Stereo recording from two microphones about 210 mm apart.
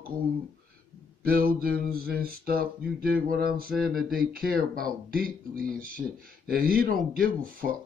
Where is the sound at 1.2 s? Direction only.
45° right (ahead or behind).